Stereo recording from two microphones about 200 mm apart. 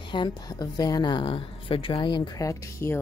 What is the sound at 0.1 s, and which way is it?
A woman's voice, 20° left (ahead or behind).